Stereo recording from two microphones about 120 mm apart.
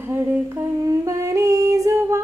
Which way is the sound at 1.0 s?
25° right (ahead or behind).